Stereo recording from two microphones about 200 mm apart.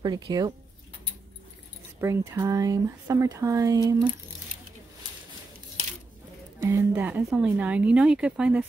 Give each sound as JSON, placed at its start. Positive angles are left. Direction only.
{"t": 0.0, "sound": "speech", "side_deg": -20}
{"t": 2.0, "sound": "speech", "side_deg": -15}
{"t": 6.6, "sound": "speech", "side_deg": -10}